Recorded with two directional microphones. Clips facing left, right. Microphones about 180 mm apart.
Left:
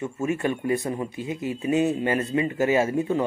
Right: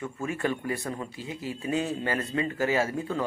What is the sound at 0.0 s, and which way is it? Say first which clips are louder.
Speech: left 5 dB; 20° left (ahead or behind).